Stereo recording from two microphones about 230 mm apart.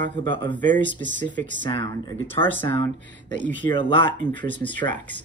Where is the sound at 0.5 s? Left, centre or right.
Centre.